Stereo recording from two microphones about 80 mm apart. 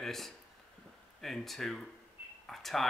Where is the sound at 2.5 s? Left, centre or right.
Centre.